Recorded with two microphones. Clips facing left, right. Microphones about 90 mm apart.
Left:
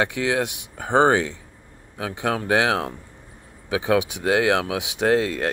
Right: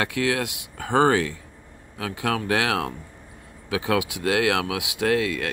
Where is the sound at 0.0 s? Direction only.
20° left (ahead or behind).